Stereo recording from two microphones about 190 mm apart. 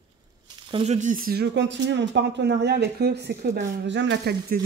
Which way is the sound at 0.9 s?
45° right (ahead or behind).